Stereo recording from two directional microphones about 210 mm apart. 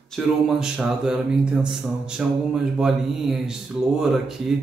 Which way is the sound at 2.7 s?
Centre (ahead or behind).